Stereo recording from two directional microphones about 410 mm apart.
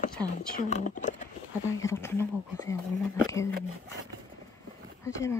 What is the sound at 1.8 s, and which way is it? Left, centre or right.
Speech, centre.